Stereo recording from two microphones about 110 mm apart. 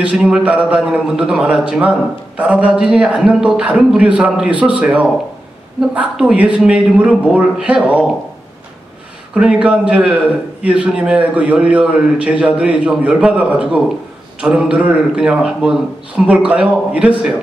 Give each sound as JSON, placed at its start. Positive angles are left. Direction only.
{"t": 0.0, "sound": "a man's voice", "side_deg": -10}
{"t": 9.3, "sound": "a man's voice", "side_deg": -10}